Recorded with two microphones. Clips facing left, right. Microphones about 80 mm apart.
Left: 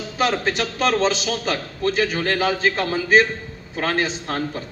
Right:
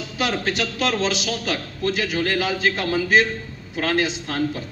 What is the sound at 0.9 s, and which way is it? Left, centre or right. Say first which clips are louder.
A man's voice: left 3 dB; left.